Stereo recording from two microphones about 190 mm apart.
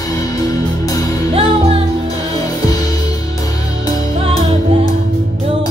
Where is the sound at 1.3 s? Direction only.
30° right (ahead or behind).